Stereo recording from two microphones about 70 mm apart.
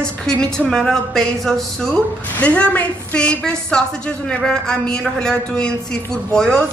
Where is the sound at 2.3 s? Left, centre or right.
Centre.